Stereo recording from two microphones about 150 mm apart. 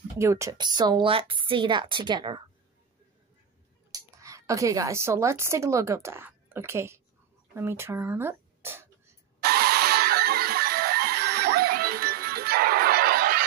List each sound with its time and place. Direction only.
0.2 s a woman's voice: 20° right (ahead or behind)
3.9 s speech: 20° right (ahead or behind)
9.4 s chicken: 90° right